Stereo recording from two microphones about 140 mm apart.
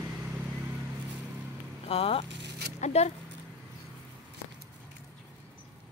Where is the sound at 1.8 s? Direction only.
45° left (ahead or behind).